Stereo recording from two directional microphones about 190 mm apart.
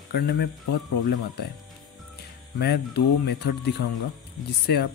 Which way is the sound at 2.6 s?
55° left (ahead or behind).